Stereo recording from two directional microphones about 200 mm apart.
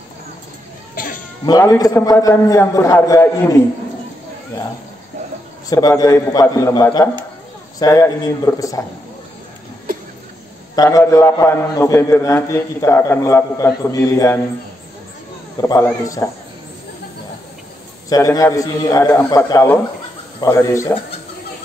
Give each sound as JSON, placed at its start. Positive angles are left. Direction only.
{"t": 0.9, "sound": "cough", "side_deg": 45}
{"t": 1.4, "sound": "a man's voice", "side_deg": 15}
{"t": 5.7, "sound": "a man's voice", "side_deg": 20}
{"t": 10.8, "sound": "a man's voice", "side_deg": 15}
{"t": 15.6, "sound": "a man's voice", "side_deg": 15}
{"t": 18.1, "sound": "a man's voice", "side_deg": 15}